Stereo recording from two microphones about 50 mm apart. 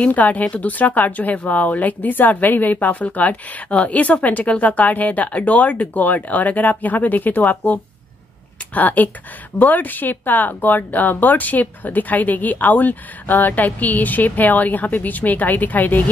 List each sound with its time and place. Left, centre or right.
0.0 s speech: left